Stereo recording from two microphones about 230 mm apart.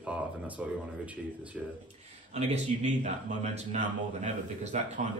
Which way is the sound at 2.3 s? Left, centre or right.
Right.